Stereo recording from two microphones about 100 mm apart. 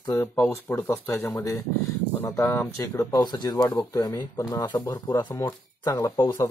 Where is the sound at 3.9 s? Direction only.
45° left (ahead or behind).